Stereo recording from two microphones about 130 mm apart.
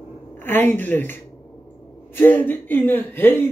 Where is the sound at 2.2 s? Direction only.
15° left (ahead or behind).